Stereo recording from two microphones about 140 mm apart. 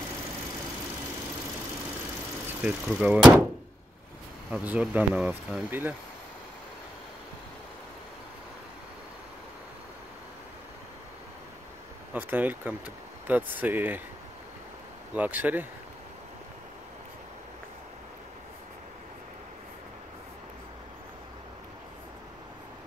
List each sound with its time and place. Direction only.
2.6 s speech: 10° right (ahead or behind)
4.5 s speech: 10° right (ahead or behind)
12.1 s speech: 10° right (ahead or behind)
15.1 s speech: 10° right (ahead or behind)